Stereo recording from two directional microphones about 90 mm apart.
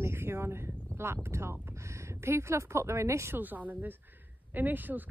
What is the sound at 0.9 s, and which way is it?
A woman's voice, 30° right (ahead or behind).